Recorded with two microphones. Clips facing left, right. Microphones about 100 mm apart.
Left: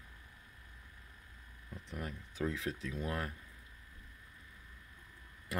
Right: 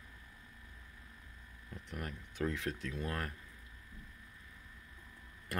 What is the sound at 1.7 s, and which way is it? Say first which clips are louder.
Speech: left 1 dB; centre (ahead or behind).